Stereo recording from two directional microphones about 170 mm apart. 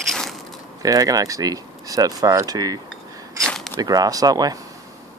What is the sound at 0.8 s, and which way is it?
Speech, 20° right (ahead or behind).